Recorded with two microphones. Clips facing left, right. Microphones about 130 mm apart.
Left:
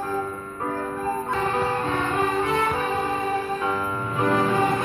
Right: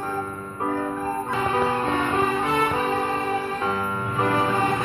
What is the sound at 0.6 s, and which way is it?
Music, 20° right (ahead or behind).